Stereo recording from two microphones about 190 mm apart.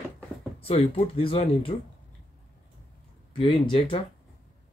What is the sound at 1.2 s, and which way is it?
Speech, 30° left (ahead or behind).